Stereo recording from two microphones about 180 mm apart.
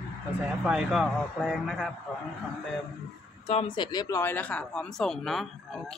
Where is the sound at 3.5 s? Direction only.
30° left (ahead or behind).